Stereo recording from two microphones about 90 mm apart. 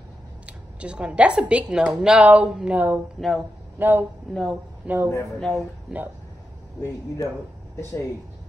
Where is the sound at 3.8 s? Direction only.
20° right (ahead or behind).